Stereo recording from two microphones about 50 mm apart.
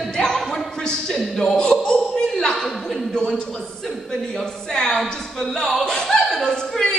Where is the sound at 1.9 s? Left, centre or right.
Centre.